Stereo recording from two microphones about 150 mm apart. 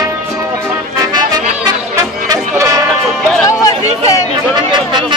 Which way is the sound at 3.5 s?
20° left (ahead or behind).